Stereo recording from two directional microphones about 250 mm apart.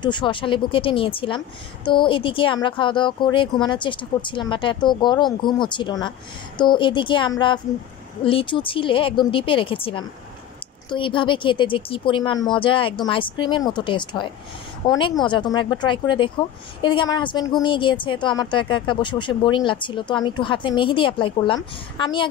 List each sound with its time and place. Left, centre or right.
0.0 s a woman's voice: centre